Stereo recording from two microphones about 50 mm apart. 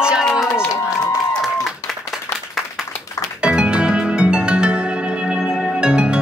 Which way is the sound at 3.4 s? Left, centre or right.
Centre.